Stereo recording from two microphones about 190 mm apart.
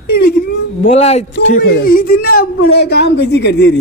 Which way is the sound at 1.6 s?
55° left (ahead or behind).